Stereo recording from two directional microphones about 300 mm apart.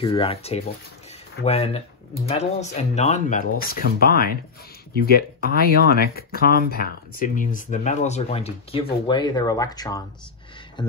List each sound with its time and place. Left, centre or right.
0.0 s speech: centre
10.8 s beatboxing: centre